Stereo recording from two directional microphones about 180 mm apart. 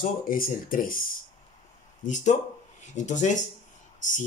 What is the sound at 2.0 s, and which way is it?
Speech, 45° left (ahead or behind).